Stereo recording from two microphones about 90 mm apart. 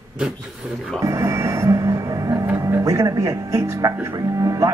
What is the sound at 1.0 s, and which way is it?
Music, 35° right (ahead or behind).